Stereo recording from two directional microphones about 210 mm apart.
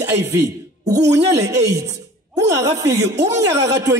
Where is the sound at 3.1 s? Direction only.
35° right (ahead or behind).